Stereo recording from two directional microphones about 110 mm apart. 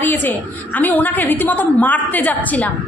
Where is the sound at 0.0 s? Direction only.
15° left (ahead or behind).